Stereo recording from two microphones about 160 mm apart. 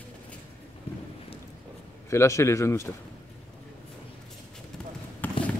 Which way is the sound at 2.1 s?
15° left (ahead or behind).